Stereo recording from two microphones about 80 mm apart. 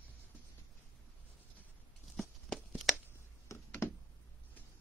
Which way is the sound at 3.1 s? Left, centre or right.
Left.